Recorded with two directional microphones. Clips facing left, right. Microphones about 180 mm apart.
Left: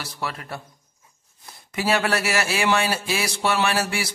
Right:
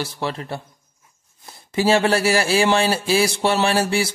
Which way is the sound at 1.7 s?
30° right (ahead or behind).